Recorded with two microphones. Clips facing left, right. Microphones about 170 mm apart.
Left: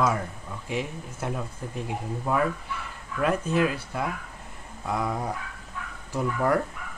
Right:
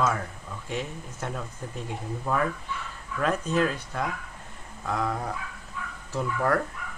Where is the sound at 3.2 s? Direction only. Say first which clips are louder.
Left 1 dB; 10° left (ahead or behind).